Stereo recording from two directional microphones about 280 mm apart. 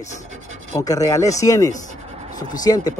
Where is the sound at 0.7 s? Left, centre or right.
Centre.